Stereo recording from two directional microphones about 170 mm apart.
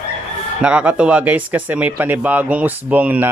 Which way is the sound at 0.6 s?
5° right (ahead or behind).